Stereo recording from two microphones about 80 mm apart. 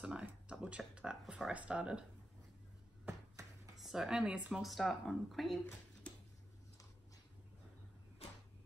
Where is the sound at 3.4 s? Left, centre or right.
Right.